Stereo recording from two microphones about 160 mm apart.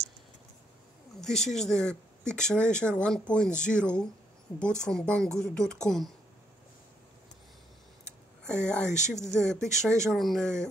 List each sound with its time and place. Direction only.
1.2 s speech: 5° left (ahead or behind)
8.5 s speech: 5° left (ahead or behind)
8.9 s speech: 45° left (ahead or behind)
9.2 s speech: 5° left (ahead or behind)